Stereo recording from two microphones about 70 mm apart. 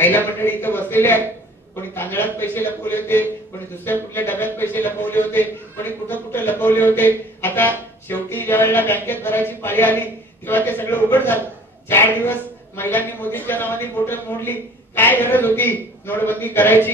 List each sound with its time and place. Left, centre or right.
0.0 s a man's voice: left